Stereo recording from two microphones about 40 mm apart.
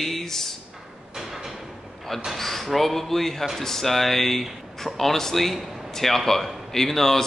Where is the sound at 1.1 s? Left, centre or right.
Centre.